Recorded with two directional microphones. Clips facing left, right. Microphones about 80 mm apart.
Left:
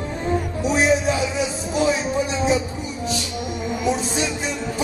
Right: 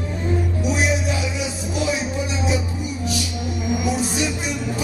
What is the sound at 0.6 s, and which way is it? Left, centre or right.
Music, left.